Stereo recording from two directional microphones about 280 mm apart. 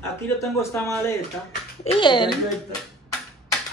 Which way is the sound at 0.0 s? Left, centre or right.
Centre.